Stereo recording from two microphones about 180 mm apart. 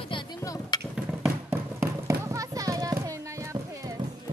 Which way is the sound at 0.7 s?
25° left (ahead or behind).